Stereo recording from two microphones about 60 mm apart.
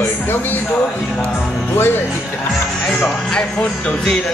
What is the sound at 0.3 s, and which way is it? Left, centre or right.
Speech, left.